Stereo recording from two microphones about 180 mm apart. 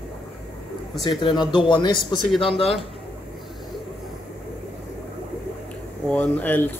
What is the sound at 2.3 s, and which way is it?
Speech, centre (ahead or behind).